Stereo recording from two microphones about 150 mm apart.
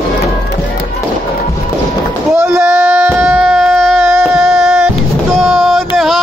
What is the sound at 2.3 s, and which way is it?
Baby cry, 20° right (ahead or behind).